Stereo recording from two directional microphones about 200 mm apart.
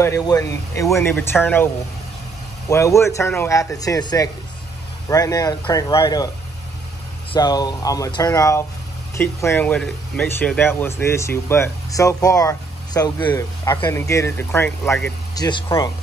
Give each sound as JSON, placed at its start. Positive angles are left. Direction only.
{"t": 0.0, "sound": "speech", "side_deg": 15}
{"t": 2.7, "sound": "speech", "side_deg": 15}
{"t": 7.3, "sound": "speech", "side_deg": 20}
{"t": 15.3, "sound": "speech", "side_deg": 20}